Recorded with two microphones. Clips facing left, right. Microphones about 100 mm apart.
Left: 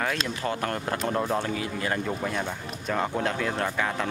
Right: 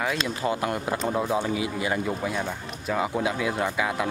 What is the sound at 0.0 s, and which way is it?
Speech, 10° right (ahead or behind).